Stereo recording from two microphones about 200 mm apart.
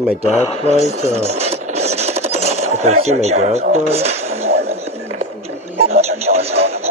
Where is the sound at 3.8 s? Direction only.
30° right (ahead or behind).